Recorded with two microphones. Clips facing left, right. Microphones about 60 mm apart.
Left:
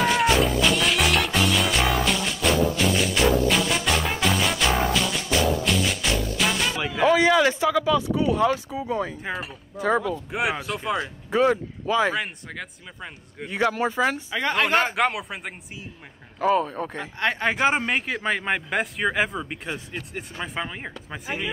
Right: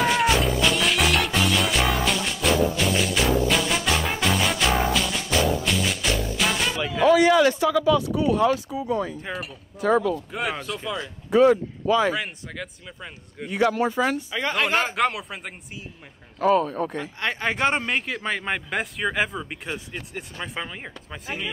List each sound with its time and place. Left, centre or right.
0.0 s music: centre
7.1 s speech: left
10.9 s speech: left
12.2 s speech: centre
13.5 s speech: left
14.8 s speech: centre
16.3 s speech: centre
17.2 s speech: centre